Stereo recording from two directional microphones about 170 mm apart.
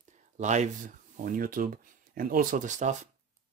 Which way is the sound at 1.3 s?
55° right (ahead or behind).